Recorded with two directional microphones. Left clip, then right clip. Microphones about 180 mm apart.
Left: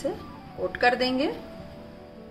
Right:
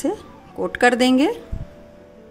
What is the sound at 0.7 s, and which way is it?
Speech, 70° right (ahead or behind).